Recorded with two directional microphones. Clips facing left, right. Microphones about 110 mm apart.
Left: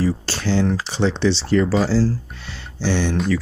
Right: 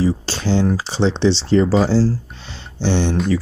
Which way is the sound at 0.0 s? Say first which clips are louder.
Right 2 dB; 15° right (ahead or behind).